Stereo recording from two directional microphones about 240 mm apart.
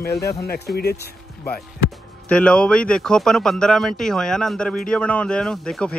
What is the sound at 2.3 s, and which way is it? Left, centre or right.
Speech, centre.